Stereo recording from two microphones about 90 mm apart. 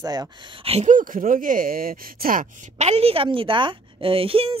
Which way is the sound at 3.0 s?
90° right.